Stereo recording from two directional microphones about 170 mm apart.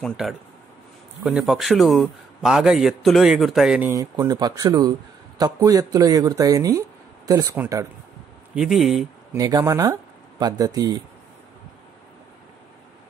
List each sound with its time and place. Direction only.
0.0 s a man's voice: centre (ahead or behind)
3.9 s speech: 20° right (ahead or behind)
8.5 s a man's voice: centre (ahead or behind)
9.3 s speech: 20° right (ahead or behind)